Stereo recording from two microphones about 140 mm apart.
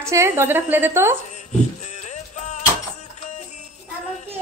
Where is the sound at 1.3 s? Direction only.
55° left (ahead or behind).